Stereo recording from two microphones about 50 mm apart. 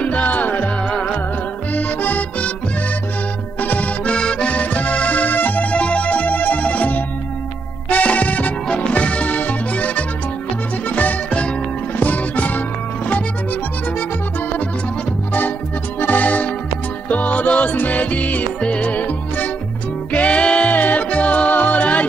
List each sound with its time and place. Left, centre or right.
0.0 s music: left
1.7 s music: left
3.6 s accordion: left
7.9 s music: left
16.0 s music: left